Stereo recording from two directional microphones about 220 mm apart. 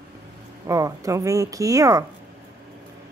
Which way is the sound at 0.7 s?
15° right (ahead or behind).